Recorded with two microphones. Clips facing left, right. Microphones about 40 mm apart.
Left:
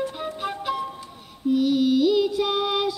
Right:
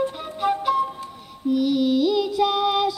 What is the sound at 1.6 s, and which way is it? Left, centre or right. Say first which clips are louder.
Child singing: even; centre.